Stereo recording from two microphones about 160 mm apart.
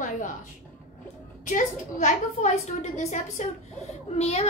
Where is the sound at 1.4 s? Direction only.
50° left (ahead or behind).